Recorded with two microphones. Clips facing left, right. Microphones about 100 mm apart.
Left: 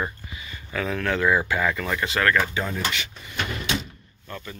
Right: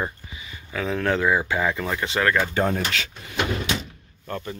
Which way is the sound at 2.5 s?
50° right (ahead or behind).